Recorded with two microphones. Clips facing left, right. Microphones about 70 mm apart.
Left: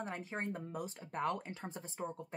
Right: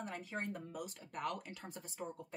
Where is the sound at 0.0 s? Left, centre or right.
Left.